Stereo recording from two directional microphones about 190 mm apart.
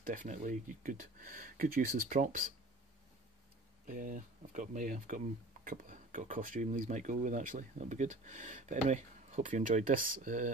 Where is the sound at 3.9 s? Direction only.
45° right (ahead or behind).